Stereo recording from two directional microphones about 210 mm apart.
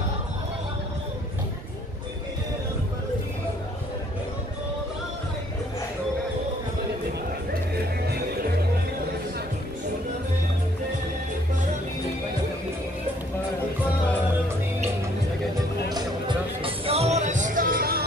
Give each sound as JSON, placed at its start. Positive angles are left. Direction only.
{"t": 15.9, "sound": "music", "side_deg": -20}